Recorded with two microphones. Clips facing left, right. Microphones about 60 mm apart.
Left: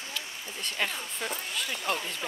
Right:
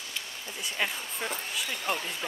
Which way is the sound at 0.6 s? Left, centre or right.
Centre.